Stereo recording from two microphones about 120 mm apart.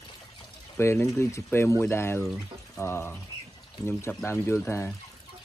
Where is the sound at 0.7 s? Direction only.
20° left (ahead or behind).